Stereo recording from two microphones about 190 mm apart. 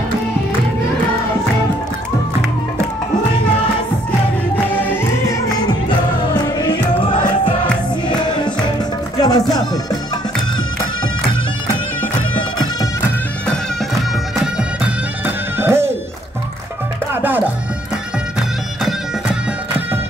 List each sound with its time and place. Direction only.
4.6 s music: 10° left (ahead or behind)
7.1 s music: 45° left (ahead or behind)
8.1 s music: 25° left (ahead or behind)
15.2 s music: 10° right (ahead or behind)
17.1 s music: 10° right (ahead or behind)